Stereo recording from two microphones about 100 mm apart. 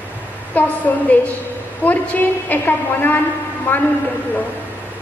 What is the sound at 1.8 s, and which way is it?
A woman's voice, 15° left (ahead or behind).